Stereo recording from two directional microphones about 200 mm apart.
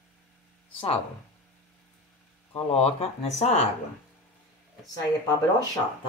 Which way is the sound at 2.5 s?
30° left (ahead or behind).